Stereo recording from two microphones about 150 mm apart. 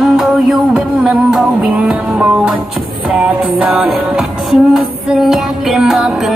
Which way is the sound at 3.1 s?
10° right (ahead or behind).